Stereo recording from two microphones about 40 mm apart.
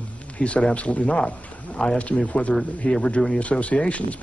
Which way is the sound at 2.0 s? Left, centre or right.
Left.